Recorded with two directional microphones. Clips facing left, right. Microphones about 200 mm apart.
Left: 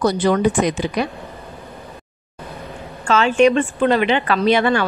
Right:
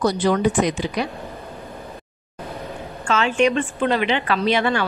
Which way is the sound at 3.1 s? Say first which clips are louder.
Left 5 dB; 40° left (ahead or behind).